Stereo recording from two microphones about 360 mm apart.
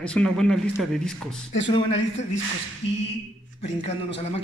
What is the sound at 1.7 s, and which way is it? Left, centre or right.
Speech, centre.